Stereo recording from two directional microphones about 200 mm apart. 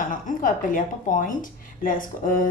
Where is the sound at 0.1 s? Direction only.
40° left (ahead or behind).